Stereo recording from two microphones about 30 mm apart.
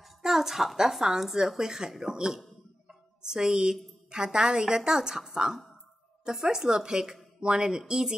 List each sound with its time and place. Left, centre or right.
0.2 s a woman's voice: centre
2.9 s a sound: right
4.1 s a woman's voice: right